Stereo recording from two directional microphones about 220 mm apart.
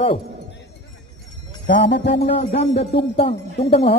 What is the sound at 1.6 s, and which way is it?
Music, 50° left (ahead or behind).